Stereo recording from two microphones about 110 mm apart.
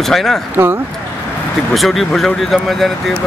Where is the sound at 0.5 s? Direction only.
20° right (ahead or behind).